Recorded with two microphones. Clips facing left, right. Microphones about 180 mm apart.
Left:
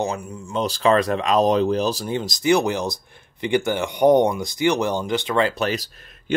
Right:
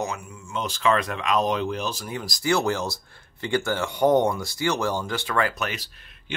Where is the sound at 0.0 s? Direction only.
35° left (ahead or behind).